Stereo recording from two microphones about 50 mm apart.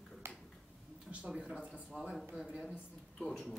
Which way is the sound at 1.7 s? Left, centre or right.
Right.